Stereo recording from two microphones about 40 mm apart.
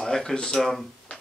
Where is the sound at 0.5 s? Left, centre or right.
Centre.